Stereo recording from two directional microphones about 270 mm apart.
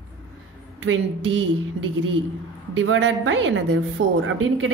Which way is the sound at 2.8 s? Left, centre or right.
Right.